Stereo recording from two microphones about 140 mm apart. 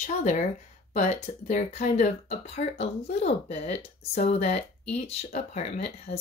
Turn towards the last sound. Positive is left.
turn(degrees=45)  # may be behind; listen again after turning